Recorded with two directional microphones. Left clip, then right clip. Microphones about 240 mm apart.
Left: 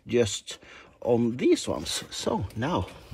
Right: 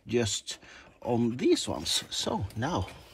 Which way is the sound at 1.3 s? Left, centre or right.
Centre.